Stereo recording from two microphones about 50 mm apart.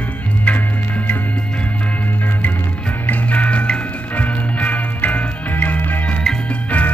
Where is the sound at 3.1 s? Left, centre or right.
Left.